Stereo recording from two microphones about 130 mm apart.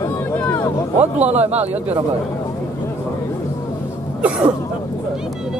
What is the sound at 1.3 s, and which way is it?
Speech, 55° right (ahead or behind).